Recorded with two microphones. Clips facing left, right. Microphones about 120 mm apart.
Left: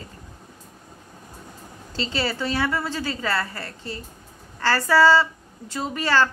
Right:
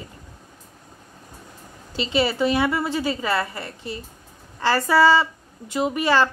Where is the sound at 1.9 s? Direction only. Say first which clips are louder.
Right 5 dB; 15° right (ahead or behind).